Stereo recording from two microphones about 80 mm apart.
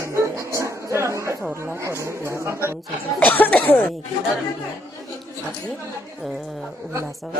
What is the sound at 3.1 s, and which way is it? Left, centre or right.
Speech, left.